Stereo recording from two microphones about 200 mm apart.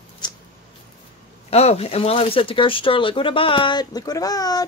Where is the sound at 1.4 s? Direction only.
30° left (ahead or behind).